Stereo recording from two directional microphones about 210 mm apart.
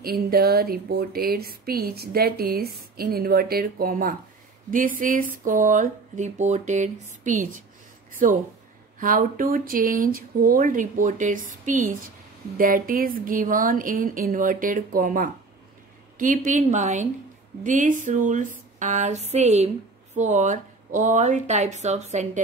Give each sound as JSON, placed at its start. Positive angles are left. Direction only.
{"t": 0.0, "sound": "speech", "side_deg": -45}